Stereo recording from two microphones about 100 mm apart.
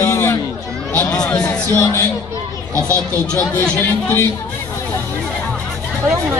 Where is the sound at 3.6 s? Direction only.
20° left (ahead or behind).